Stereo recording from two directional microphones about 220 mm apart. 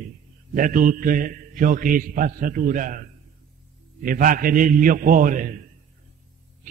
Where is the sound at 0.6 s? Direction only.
40° right (ahead or behind).